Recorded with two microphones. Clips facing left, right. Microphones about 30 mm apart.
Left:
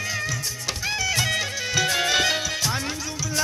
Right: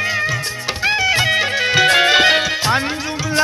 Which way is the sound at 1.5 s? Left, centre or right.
Right.